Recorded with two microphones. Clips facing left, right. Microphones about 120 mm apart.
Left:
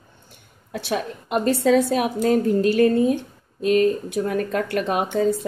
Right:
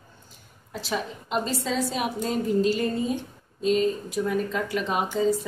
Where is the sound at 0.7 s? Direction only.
65° left (ahead or behind).